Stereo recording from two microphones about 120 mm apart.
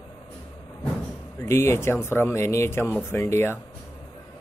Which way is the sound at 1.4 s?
20° left (ahead or behind).